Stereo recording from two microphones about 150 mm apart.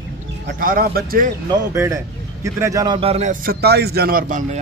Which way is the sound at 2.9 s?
45° right (ahead or behind).